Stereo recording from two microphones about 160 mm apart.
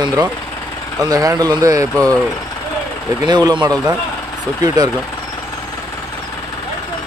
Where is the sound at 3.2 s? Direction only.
30° right (ahead or behind).